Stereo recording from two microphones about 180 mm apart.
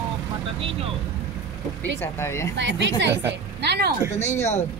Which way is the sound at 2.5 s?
80° right.